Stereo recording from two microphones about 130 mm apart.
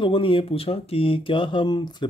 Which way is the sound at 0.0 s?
40° left (ahead or behind).